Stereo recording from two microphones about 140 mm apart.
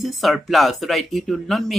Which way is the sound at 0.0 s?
Centre (ahead or behind).